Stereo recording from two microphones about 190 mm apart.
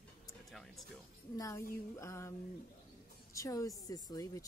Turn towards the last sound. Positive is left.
turn(degrees=20)  # may be behind; listen again after turning